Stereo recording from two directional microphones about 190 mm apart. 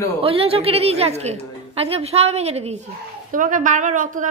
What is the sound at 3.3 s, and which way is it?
A woman's voice, 45° right (ahead or behind).